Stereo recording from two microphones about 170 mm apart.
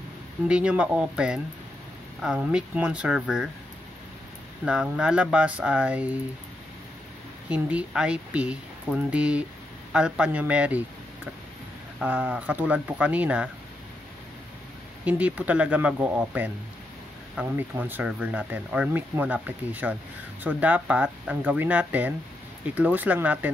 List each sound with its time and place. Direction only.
0.5 s speech: 5° right (ahead or behind)
4.6 s speech: 5° right (ahead or behind)
7.4 s speech: 5° right (ahead or behind)
12.0 s speech: 10° right (ahead or behind)
15.0 s speech: 10° right (ahead or behind)